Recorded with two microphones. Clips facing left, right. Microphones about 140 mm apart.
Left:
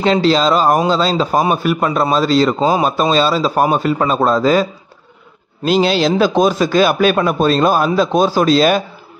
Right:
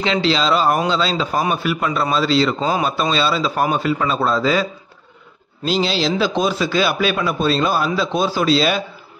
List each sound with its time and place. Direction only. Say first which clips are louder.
0.0 s a man's voice: left 5 dB; 45° left (ahead or behind)
5.7 s a man's voice: left 6 dB; 55° left (ahead or behind)